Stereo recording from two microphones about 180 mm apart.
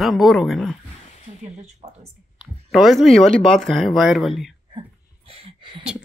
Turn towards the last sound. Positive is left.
turn(degrees=-30)  # may be behind; listen again after turning